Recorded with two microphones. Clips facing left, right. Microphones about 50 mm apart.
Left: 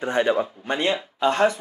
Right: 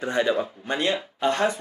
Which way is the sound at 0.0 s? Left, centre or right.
Left.